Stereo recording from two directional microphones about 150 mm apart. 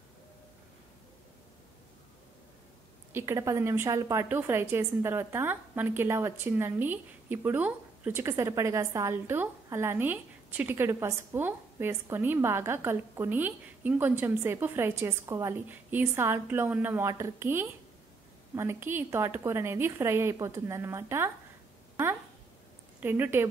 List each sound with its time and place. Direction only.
3.1 s a woman's voice: 15° right (ahead or behind)
22.9 s speech: 10° right (ahead or behind)